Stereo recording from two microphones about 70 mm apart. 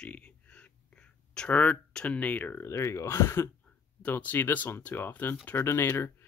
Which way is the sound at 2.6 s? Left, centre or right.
Left.